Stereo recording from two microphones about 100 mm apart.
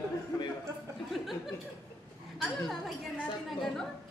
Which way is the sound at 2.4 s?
Centre (ahead or behind).